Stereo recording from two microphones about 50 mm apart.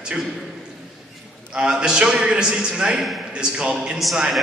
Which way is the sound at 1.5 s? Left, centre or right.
Centre.